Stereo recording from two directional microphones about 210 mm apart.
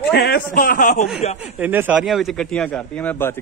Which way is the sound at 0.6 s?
40° left (ahead or behind).